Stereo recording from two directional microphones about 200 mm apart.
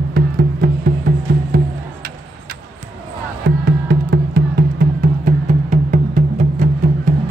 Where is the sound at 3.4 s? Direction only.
55° right (ahead or behind).